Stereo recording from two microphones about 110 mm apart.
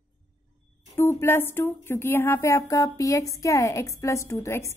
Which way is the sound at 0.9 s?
25° left (ahead or behind).